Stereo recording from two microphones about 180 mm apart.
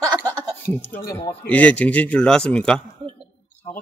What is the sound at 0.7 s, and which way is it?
Speech, 10° left (ahead or behind).